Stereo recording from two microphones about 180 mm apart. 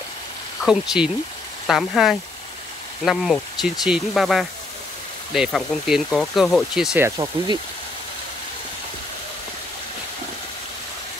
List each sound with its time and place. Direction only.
0.7 s speech: 5° right (ahead or behind)
7.1 s speech: 20° right (ahead or behind)